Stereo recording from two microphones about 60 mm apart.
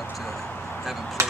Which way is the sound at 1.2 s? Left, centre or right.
Right.